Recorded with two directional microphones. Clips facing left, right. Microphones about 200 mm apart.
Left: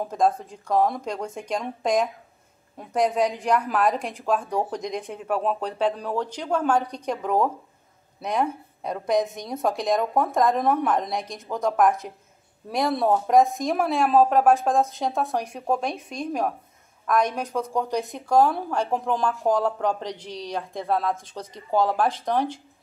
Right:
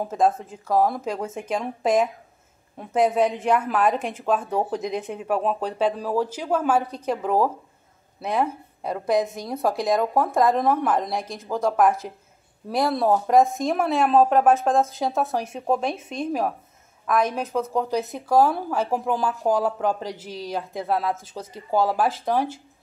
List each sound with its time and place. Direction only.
0.0 s speech: 5° right (ahead or behind)